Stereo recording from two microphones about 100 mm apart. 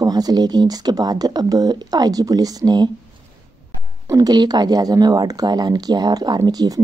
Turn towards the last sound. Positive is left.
turn(degrees=-40)  # may be behind; listen again after turning